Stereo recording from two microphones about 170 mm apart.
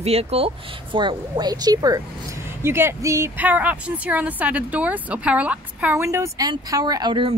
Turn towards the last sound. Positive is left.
turn(degrees=-30)  # may be behind; listen again after turning